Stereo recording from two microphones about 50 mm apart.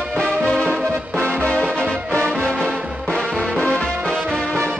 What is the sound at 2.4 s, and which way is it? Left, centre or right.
Music, centre.